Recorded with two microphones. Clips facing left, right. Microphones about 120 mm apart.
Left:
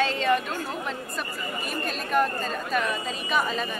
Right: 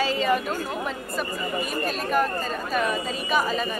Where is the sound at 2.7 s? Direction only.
Centre (ahead or behind).